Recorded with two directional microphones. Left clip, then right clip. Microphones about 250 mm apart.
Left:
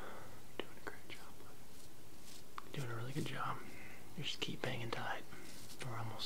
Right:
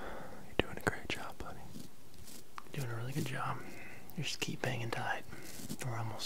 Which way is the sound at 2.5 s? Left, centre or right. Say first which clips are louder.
Right 2 dB; centre.